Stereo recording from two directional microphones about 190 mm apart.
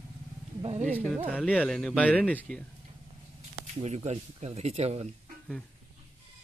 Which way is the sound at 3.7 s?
35° right (ahead or behind).